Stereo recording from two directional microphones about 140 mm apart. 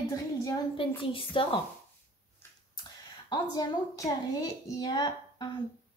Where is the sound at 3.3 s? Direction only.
25° left (ahead or behind).